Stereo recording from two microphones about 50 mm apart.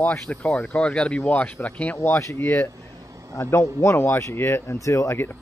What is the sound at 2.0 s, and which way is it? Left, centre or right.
Speech, left.